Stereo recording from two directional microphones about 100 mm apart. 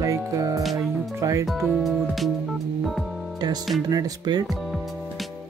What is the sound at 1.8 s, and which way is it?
Music, centre (ahead or behind).